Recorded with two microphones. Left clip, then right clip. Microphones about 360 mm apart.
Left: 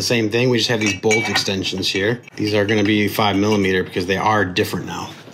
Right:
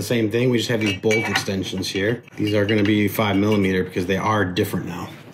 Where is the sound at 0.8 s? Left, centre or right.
Centre.